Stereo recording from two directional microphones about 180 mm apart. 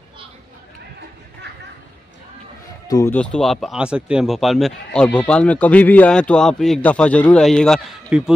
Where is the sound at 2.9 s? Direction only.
20° left (ahead or behind).